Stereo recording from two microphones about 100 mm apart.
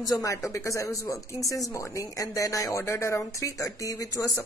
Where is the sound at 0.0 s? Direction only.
35° left (ahead or behind).